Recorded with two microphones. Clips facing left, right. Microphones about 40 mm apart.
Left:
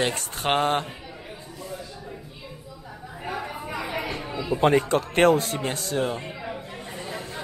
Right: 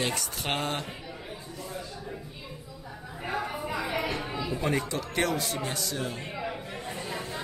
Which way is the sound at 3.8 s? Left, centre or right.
Left.